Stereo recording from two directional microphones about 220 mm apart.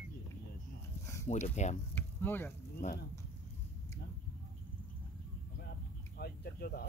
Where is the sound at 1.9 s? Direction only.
10° left (ahead or behind).